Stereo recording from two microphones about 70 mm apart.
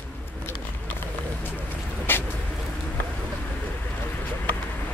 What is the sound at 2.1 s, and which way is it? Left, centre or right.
Vehicle, left.